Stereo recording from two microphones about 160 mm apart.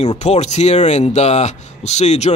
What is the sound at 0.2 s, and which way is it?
Speech, 45° left (ahead or behind).